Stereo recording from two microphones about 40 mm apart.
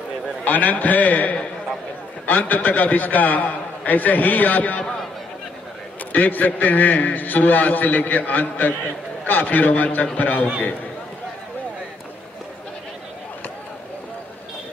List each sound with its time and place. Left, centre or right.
0.5 s a man's voice: left
6.1 s a man's voice: left